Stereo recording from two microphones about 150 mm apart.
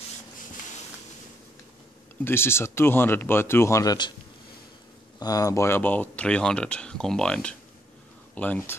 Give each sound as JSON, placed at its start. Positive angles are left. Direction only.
{"t": 2.2, "sound": "speech", "side_deg": 15}
{"t": 5.2, "sound": "speech", "side_deg": 25}